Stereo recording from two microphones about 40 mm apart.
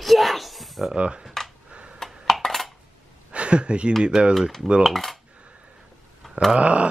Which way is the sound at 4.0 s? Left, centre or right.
Centre.